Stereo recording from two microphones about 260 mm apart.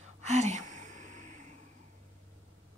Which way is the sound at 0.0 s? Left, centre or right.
Right.